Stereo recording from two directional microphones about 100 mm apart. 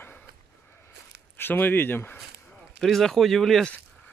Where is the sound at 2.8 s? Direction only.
5° left (ahead or behind).